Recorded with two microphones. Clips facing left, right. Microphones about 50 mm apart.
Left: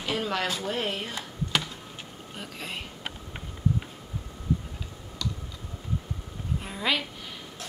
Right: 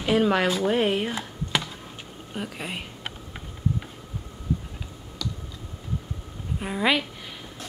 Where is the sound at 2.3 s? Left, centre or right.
Centre.